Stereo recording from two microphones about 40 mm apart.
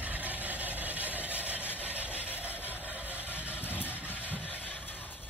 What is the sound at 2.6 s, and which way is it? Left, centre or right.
Music, left.